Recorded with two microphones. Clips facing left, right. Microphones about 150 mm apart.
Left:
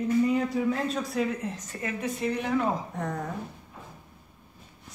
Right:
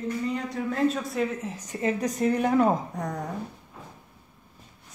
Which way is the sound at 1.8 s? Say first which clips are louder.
Right 5 dB; 40° right (ahead or behind).